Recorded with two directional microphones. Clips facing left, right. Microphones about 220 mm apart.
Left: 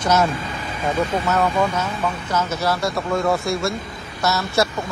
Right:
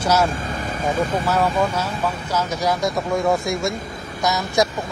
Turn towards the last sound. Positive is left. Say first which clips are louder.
# even
turn(degrees=-15)  # may be behind; listen again after turning